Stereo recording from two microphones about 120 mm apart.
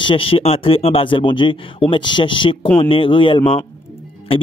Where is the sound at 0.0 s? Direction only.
45° left (ahead or behind).